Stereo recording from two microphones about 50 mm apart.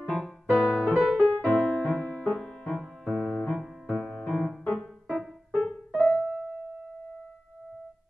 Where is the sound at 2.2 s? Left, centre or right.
Centre.